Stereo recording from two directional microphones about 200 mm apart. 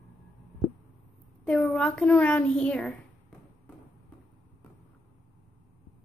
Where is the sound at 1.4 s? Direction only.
5° left (ahead or behind).